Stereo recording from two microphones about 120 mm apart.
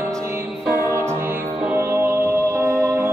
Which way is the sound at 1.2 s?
15° right (ahead or behind).